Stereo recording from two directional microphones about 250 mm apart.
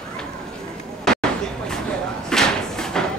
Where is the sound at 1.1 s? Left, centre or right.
Centre.